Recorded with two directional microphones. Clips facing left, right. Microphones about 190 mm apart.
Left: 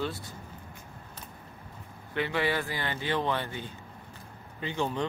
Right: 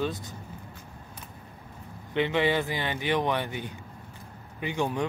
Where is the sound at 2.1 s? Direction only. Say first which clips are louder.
Right 4 dB; 20° right (ahead or behind).